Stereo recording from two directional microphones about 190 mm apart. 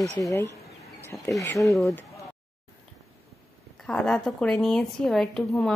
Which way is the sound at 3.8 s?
5° left (ahead or behind).